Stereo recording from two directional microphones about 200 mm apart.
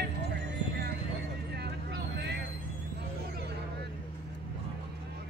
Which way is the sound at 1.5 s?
55° right (ahead or behind).